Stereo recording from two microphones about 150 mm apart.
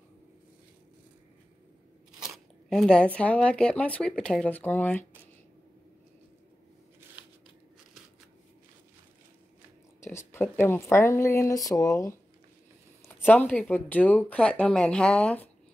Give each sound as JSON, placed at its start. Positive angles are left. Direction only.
{"t": 2.1, "sound": "speech", "side_deg": 0}
{"t": 10.0, "sound": "speech", "side_deg": 15}